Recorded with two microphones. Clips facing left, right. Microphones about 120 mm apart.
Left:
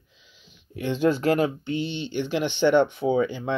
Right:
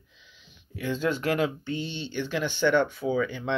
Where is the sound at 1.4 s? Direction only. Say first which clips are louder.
Left 3 dB; 15° left (ahead or behind).